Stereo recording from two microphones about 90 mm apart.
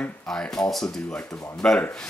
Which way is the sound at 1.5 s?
10° left (ahead or behind).